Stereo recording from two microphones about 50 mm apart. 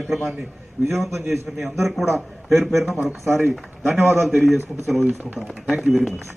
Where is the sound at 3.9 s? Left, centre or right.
Right.